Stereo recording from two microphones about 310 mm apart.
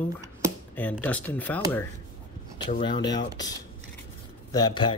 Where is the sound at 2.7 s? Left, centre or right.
Centre.